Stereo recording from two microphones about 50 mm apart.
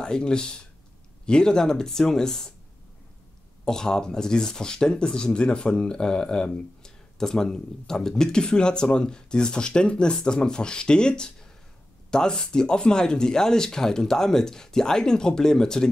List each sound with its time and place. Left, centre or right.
0.0 s speech: centre
3.6 s speech: centre